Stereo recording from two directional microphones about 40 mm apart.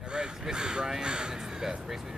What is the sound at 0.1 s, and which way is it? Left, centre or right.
Speech, right.